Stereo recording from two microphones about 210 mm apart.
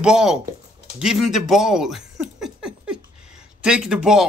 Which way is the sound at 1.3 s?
Centre (ahead or behind).